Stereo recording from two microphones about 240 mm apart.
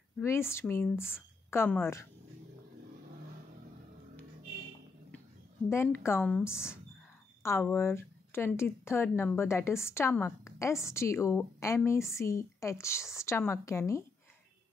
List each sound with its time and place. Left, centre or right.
0.2 s a woman's voice: centre
5.7 s a woman's voice: centre